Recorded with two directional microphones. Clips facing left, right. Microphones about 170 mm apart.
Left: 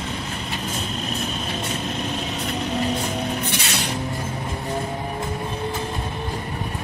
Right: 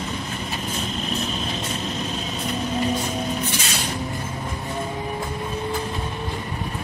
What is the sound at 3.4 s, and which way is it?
Music, 65° left (ahead or behind).